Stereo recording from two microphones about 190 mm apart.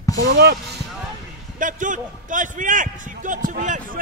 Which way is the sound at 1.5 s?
45° right (ahead or behind).